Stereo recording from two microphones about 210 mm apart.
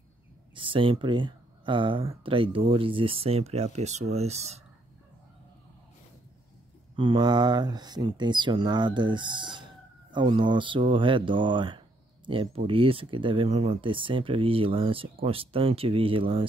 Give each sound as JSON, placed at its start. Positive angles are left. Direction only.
{"t": 0.6, "sound": "speech", "side_deg": -25}
{"t": 7.0, "sound": "speech", "side_deg": -20}